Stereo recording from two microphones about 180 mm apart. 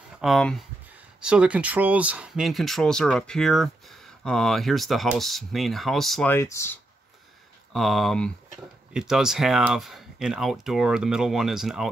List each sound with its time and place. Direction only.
0.2 s speech: centre (ahead or behind)
6.3 s speech: 15° left (ahead or behind)
7.7 s speech: centre (ahead or behind)